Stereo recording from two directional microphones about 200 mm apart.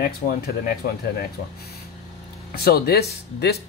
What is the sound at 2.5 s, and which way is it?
Speech, 50° left (ahead or behind).